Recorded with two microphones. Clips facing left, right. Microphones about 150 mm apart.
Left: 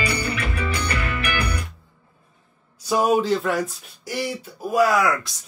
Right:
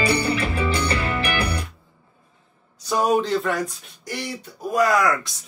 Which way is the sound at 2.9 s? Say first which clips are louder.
Left 1 dB; 5° left (ahead or behind).